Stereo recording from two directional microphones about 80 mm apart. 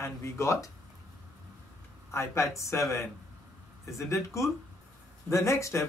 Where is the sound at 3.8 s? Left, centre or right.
Left.